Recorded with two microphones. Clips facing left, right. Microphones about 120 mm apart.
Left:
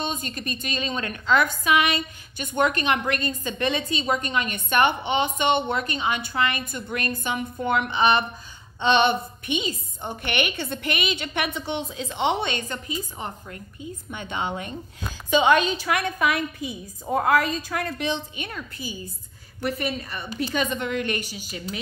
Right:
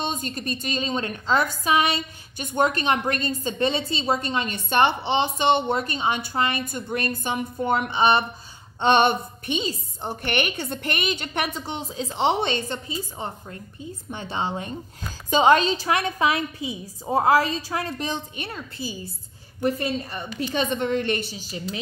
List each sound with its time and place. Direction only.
0.2 s a woman's voice: 40° right (ahead or behind)
8.8 s a woman's voice: 45° right (ahead or behind)
20.5 s a woman's voice: 35° right (ahead or behind)